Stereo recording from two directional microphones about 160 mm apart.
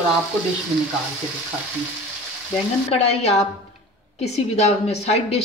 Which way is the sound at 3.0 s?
40° left (ahead or behind).